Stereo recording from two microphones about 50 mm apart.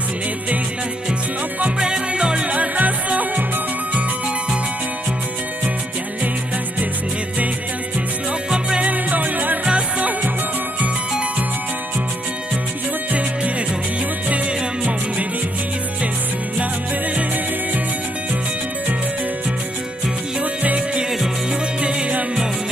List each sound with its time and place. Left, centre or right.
1.8 s music: centre; by 3.4 s right
8.5 s music: centre
8.8 s music: right
20.6 s music: right